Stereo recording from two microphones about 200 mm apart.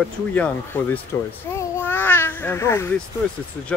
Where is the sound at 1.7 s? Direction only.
10° left (ahead or behind).